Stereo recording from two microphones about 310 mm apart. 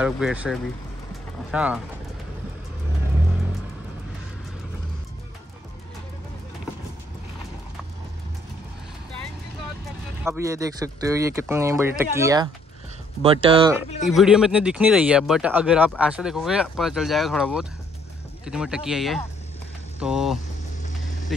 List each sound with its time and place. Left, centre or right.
0.0 s speech: centre
10.2 s speech: centre
14.0 s speech: centre
21.3 s vehicle: centre